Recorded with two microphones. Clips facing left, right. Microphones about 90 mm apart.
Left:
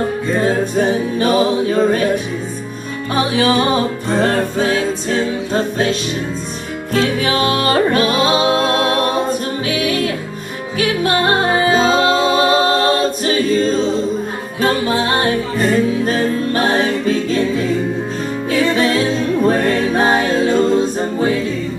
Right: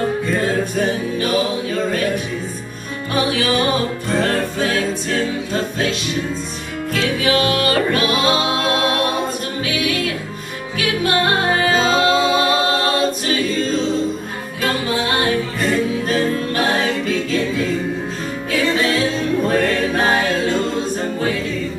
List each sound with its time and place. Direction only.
0.3 s music: 25° left (ahead or behind)
3.2 s music: 25° left (ahead or behind)
19.4 s music: 25° left (ahead or behind)
20.5 s a capella: 20° left (ahead or behind)